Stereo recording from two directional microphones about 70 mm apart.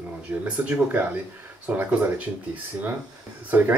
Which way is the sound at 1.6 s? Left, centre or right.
Right.